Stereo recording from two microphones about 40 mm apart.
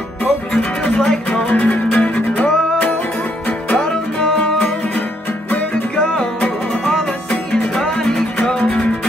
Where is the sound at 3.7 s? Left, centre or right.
Left.